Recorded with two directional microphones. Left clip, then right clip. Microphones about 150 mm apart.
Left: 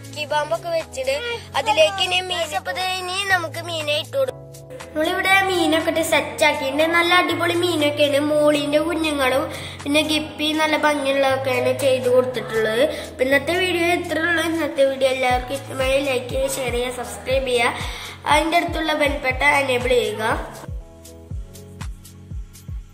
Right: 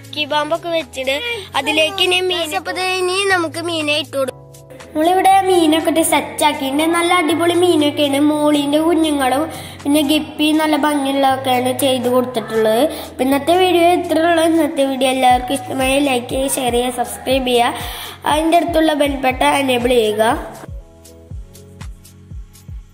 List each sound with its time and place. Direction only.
0.2 s a woman's voice: centre (ahead or behind)
5.0 s a woman's voice: 25° right (ahead or behind)